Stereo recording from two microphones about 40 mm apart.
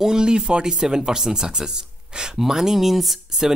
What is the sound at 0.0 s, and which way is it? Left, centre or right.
Speech, centre.